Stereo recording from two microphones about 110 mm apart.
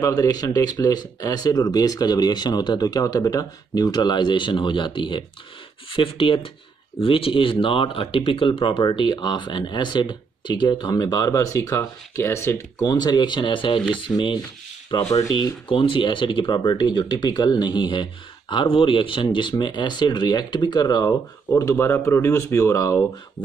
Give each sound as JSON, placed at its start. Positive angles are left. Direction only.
{"t": 0.0, "sound": "speech", "side_deg": 35}
{"t": 15.2, "sound": "speech", "side_deg": 35}
{"t": 15.7, "sound": "speech", "side_deg": 50}
{"t": 21.5, "sound": "speech", "side_deg": 25}